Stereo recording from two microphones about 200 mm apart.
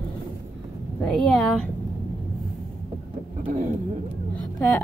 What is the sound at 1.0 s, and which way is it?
Speech, centre (ahead or behind).